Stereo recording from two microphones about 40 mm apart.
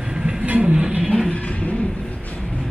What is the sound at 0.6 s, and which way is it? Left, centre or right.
Music, right.